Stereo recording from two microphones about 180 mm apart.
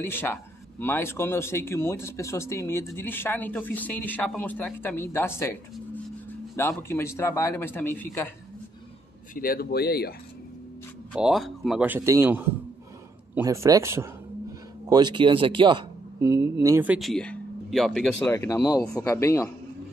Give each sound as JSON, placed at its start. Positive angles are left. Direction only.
{"t": 0.0, "sound": "speech", "side_deg": 10}
{"t": 6.8, "sound": "speech", "side_deg": 15}
{"t": 9.3, "sound": "speech", "side_deg": 55}
{"t": 11.1, "sound": "speech", "side_deg": 0}
{"t": 18.3, "sound": "speech", "side_deg": 15}